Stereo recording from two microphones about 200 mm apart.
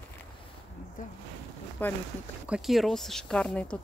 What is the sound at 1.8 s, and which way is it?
Speech, 10° left (ahead or behind).